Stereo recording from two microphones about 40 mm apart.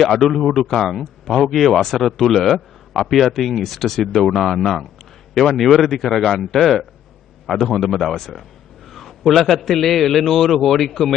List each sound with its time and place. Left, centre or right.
0.0 s speech: centre